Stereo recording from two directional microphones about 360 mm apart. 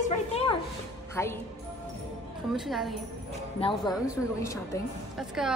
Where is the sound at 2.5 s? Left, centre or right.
Centre.